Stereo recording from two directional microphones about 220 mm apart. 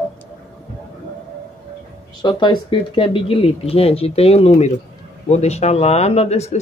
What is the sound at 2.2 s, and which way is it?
Speech, 20° left (ahead or behind).